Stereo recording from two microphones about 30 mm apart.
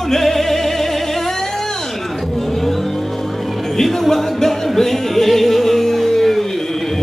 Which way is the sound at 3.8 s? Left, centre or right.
Centre.